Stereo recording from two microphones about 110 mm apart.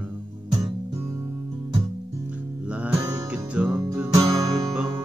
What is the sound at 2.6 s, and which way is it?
Music, 10° right (ahead or behind).